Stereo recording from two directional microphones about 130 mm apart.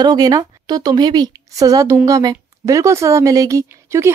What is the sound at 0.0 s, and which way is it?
A woman's voice, 30° right (ahead or behind).